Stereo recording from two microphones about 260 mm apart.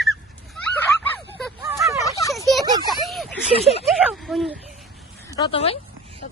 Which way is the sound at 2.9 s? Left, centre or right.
Centre.